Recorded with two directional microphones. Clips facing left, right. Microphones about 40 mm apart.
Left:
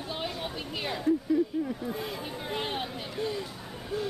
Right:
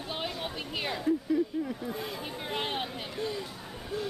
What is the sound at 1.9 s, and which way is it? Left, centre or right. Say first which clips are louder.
Speech: left 1 dB; centre.